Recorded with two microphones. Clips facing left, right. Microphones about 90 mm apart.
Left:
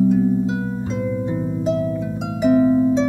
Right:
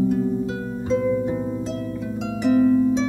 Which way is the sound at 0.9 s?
5° left (ahead or behind).